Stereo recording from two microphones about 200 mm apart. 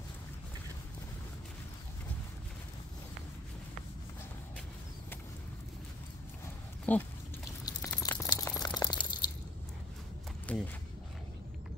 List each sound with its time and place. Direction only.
6.9 s speech: 10° left (ahead or behind)
7.6 s a sound: 20° left (ahead or behind)
10.5 s speech: 5° left (ahead or behind)